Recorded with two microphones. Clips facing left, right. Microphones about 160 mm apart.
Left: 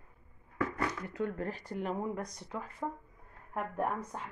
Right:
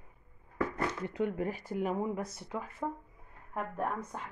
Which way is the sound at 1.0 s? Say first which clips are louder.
Right 3 dB; 20° right (ahead or behind).